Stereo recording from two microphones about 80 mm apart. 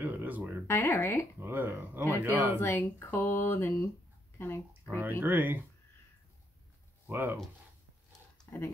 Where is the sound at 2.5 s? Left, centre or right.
Left.